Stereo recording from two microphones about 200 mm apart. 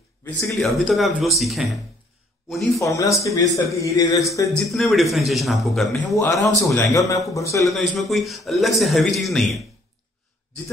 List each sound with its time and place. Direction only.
0.4 s a man's voice: 5° left (ahead or behind)
2.8 s speech: 15° left (ahead or behind)
4.6 s a man's voice: centre (ahead or behind)
6.1 s speech: 15° left (ahead or behind)
7.6 s a man's voice: centre (ahead or behind)